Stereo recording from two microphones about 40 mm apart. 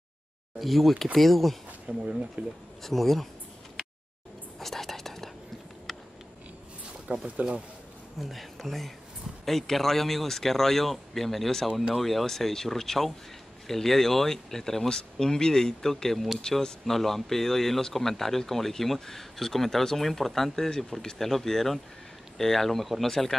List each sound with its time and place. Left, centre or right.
0.6 s speech: centre
1.9 s speech: right
2.4 s speech: right
2.8 s speech: centre
4.6 s whispering: centre
5.9 s a sound: centre
7.1 s speech: right
8.2 s speech: centre